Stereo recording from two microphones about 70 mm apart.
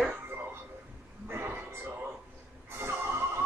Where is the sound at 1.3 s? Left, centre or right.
Right.